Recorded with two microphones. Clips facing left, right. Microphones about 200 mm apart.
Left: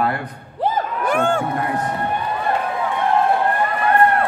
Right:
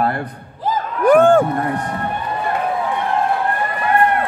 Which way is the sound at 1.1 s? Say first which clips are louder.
Right 10 dB; 50° right (ahead or behind).